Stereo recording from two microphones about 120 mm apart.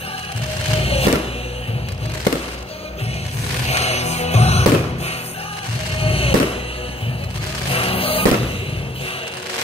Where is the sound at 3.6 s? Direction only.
65° left (ahead or behind).